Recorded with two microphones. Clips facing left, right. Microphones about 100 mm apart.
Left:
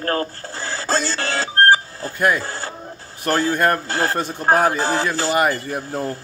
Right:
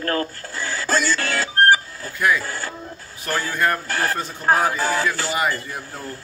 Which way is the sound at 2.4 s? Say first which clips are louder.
Left 1 dB; 30° left (ahead or behind).